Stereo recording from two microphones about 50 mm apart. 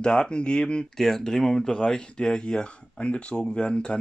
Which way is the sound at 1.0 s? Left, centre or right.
Centre.